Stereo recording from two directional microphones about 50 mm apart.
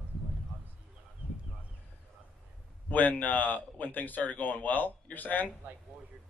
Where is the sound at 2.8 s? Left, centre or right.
Left.